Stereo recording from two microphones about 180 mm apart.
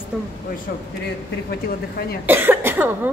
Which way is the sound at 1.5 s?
60° left (ahead or behind).